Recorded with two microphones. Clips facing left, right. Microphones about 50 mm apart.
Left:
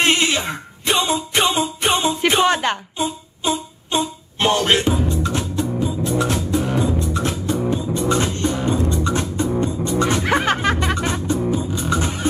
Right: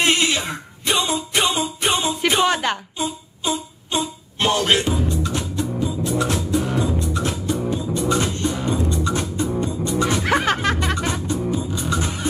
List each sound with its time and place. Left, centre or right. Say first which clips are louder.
0.0 s music: left 1 dB; centre